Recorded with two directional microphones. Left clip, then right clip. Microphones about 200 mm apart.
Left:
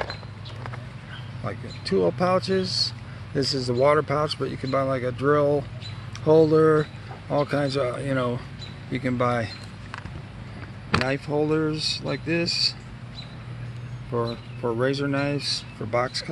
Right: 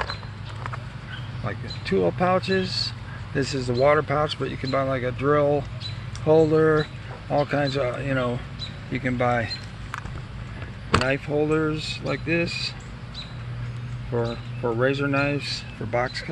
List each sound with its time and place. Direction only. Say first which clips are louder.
1.4 s speech: even; 15° left (ahead or behind)
6.2 s speech: left 1 dB; 30° left (ahead or behind)
6.6 s speech: left 1 dB; 20° left (ahead or behind)
11.1 s speech: right 1 dB; 20° left (ahead or behind)
14.1 s speech: even; 15° left (ahead or behind)